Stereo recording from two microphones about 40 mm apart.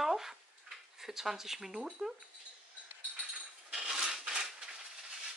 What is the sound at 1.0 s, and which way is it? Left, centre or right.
Speech, centre.